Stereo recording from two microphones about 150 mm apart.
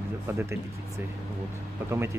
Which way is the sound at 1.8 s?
15° right (ahead or behind).